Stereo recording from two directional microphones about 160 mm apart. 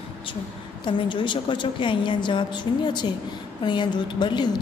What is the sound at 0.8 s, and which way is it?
A woman's voice, 30° left (ahead or behind).